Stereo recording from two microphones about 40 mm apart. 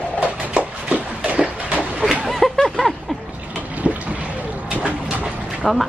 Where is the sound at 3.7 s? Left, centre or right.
Right.